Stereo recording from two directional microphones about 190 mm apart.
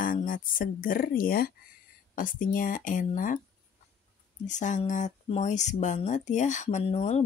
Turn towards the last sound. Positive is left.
turn(degrees=35)  # may be behind; listen again after turning